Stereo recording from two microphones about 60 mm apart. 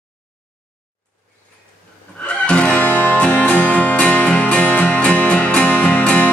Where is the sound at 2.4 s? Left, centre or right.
Centre.